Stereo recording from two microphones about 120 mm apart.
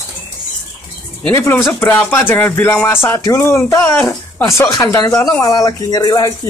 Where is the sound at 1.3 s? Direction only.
20° left (ahead or behind).